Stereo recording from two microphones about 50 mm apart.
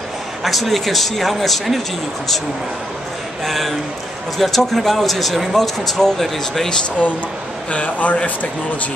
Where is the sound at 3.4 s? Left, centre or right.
Centre.